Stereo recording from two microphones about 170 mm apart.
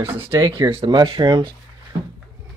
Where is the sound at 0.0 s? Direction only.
15° right (ahead or behind).